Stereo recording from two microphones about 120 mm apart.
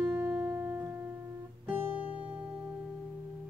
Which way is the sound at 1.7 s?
15° right (ahead or behind).